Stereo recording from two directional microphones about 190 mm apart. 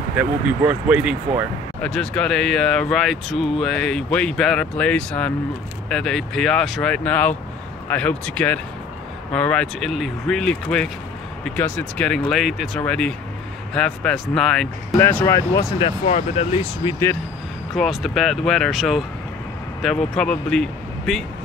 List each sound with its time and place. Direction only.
0.2 s speech: 5° right (ahead or behind)
1.8 s speech: 5° left (ahead or behind)
16.1 s speech: 30° left (ahead or behind)
17.7 s speech: centre (ahead or behind)